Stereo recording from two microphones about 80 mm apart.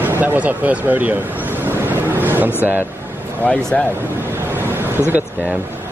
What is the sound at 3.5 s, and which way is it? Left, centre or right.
Speech, centre.